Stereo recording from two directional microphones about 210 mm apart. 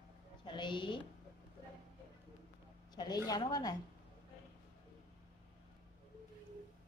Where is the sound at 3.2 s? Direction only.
20° left (ahead or behind).